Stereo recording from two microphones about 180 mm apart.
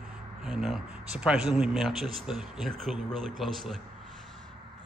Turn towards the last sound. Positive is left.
turn(degrees=0)  # may be behind; listen again after turning